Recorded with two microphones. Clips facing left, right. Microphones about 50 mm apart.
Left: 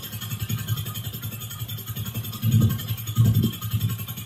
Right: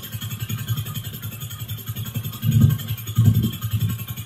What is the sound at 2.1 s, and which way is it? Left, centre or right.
Music, right.